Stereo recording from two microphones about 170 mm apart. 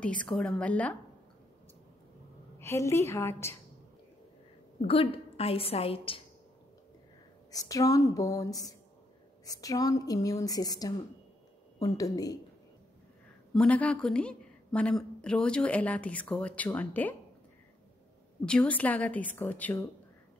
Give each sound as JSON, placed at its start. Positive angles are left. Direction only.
{"t": 0.0, "sound": "a woman's voice", "side_deg": 5}
{"t": 2.6, "sound": "a woman's voice", "side_deg": 15}
{"t": 4.8, "sound": "a woman's voice", "side_deg": 35}
{"t": 7.5, "sound": "a woman's voice", "side_deg": 20}
{"t": 13.5, "sound": "a woman's voice", "side_deg": 5}
{"t": 18.4, "sound": "a woman's voice", "side_deg": 5}